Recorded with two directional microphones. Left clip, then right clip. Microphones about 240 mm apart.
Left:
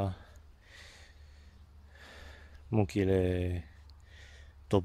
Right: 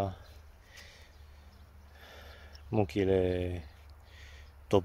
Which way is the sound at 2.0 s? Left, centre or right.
Left.